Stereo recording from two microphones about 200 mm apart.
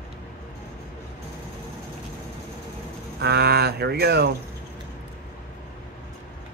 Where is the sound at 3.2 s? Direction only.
55° right (ahead or behind).